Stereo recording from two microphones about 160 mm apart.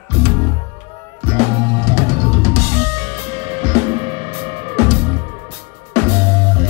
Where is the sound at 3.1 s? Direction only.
40° right (ahead or behind).